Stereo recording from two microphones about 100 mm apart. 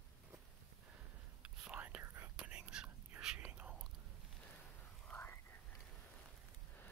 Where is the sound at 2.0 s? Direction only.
30° right (ahead or behind).